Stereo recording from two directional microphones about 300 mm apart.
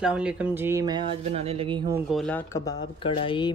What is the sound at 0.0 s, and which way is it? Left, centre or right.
Speech, centre.